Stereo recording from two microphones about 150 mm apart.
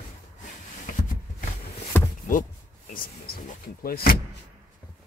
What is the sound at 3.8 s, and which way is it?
Speech, 85° left.